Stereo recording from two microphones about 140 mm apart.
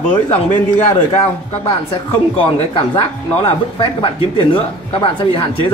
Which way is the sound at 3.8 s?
40° left (ahead or behind).